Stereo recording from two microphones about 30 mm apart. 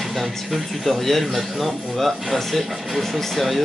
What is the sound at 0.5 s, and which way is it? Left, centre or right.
Speech, centre.